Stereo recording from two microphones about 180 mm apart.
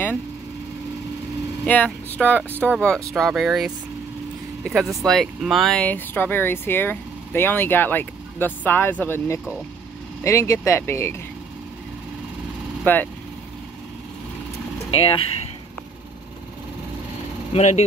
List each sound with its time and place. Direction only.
1.7 s speech: 10° left (ahead or behind)
12.8 s speech: 10° left (ahead or behind)
14.9 s speech: 30° left (ahead or behind)
17.5 s speech: 40° left (ahead or behind)